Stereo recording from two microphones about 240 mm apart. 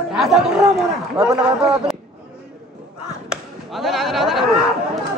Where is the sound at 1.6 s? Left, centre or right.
Centre.